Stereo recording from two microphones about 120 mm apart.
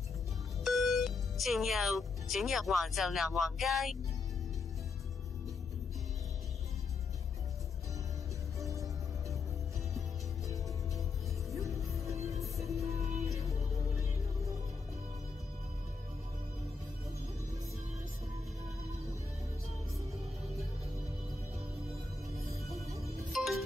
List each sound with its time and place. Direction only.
0.7 s speech: centre (ahead or behind)
8.5 s music: 25° right (ahead or behind)
11.5 s music: 25° right (ahead or behind)
13.0 s music: 65° right (ahead or behind)
13.3 s music: 25° right (ahead or behind)
23.3 s music: centre (ahead or behind)